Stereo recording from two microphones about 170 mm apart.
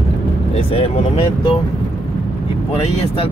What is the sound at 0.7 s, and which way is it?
Speech, 35° left (ahead or behind).